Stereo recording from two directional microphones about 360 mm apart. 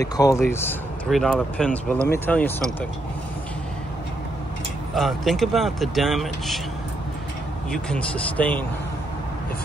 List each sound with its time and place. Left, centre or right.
0.0 s speech: centre
4.9 s speech: centre
7.7 s speech: centre